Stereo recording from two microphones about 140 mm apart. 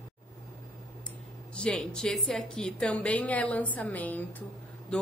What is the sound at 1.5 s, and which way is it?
Speech, 5° left (ahead or behind).